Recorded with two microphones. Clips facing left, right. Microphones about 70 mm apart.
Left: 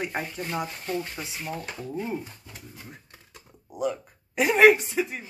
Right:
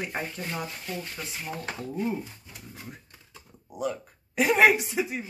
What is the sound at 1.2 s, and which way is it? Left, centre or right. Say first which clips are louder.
Speech: left 1 dB; centre.